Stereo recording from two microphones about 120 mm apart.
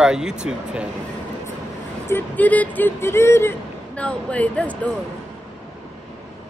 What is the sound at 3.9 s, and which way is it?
Speech, 10° left (ahead or behind).